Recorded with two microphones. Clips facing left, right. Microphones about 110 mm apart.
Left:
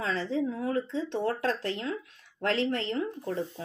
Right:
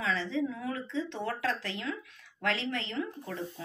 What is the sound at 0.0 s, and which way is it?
A woman's voice, 40° left (ahead or behind).